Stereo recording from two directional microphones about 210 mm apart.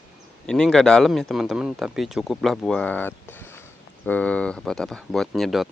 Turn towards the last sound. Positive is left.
turn(degrees=0)  # may be behind; listen again after turning